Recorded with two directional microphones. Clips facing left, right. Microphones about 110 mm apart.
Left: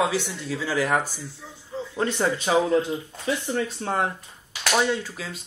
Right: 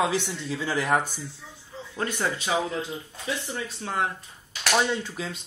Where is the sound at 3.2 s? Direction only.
40° left (ahead or behind).